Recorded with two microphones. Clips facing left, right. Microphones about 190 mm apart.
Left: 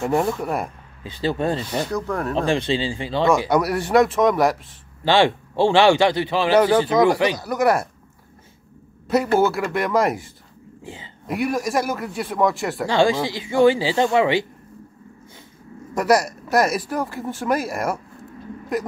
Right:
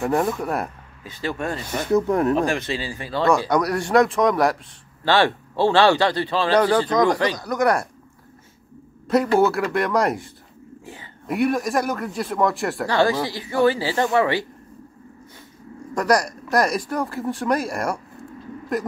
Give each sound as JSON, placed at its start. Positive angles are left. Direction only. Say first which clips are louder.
{"t": 0.0, "sound": "speech", "louder": "even", "side_deg": 0}
{"t": 1.0, "sound": "speech", "louder": "left 4 dB", "side_deg": 30}
{"t": 2.0, "sound": "speech", "louder": "right 6 dB", "side_deg": -20}
{"t": 2.3, "sound": "speech", "louder": "left 1 dB", "side_deg": 30}
{"t": 3.4, "sound": "speech", "louder": "left 1 dB", "side_deg": 5}
{"t": 5.0, "sound": "a man's voice", "louder": "left 2 dB", "side_deg": 15}
{"t": 9.0, "sound": "speech", "louder": "right 1 dB", "side_deg": 0}
{"t": 12.8, "sound": "speech", "louder": "left 2 dB", "side_deg": 20}
{"t": 15.9, "sound": "speech", "louder": "left 2 dB", "side_deg": 5}